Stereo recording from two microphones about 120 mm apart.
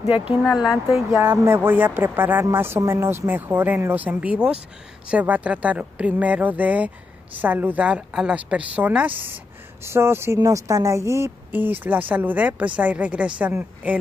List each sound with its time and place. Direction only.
0.1 s speech: 10° right (ahead or behind)
1.2 s speech: 20° right (ahead or behind)